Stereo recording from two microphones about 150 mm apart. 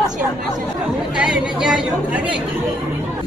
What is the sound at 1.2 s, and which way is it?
A woman's voice, 5° right (ahead or behind).